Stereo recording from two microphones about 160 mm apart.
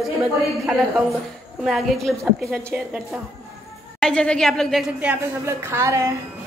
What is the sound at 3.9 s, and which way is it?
A woman's voice, 5° left (ahead or behind).